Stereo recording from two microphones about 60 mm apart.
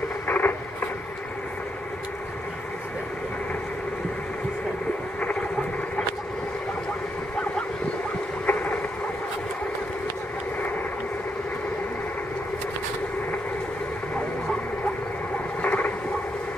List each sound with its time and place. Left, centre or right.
0.3 s radio: left
8.5 s boat: left
15.6 s radio: left